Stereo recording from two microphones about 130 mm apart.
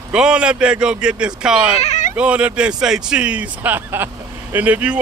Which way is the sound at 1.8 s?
65° left (ahead or behind).